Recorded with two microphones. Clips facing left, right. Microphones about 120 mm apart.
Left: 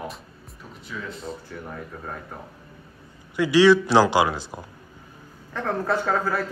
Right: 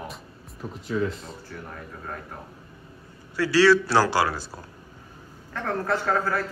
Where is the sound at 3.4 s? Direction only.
15° left (ahead or behind).